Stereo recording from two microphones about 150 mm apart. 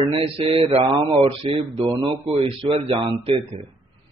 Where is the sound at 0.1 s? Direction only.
40° right (ahead or behind).